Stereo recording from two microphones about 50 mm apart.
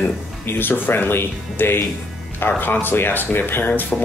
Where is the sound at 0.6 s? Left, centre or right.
Left.